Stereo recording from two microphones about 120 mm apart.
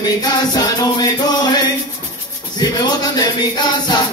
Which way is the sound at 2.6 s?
35° left (ahead or behind).